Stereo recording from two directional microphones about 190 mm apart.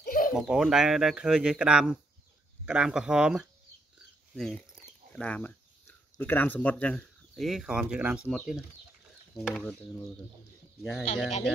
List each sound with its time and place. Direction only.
0.0 s bird: 45° left (ahead or behind)
0.3 s speech: 5° right (ahead or behind)
10.8 s speech: centre (ahead or behind)